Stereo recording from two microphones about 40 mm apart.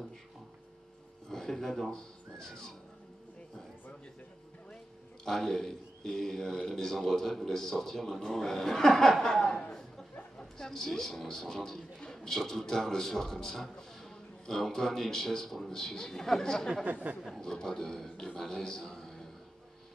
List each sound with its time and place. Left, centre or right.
1.3 s speech: centre
5.2 s a man's voice: centre
16.8 s speech: right
17.3 s a man's voice: centre